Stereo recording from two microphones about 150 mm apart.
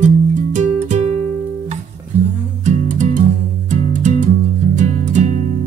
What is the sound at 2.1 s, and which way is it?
Music, 10° right (ahead or behind).